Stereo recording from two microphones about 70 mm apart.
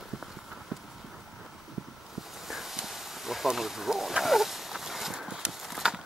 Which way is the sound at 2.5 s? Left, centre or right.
Centre.